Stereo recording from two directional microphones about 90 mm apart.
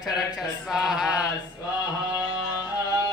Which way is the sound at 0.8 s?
5° right (ahead or behind).